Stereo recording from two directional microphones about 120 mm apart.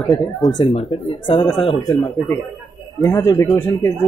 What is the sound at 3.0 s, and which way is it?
Speech, 25° left (ahead or behind).